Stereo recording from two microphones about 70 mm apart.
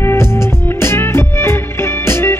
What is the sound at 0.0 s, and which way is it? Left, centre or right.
Music, left.